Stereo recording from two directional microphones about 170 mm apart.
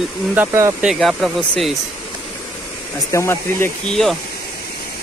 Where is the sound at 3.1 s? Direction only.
15° left (ahead or behind).